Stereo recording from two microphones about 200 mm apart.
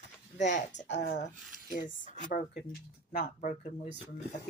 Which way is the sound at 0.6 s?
35° left (ahead or behind).